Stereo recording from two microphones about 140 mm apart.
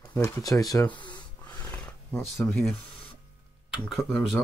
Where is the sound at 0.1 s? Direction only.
25° left (ahead or behind).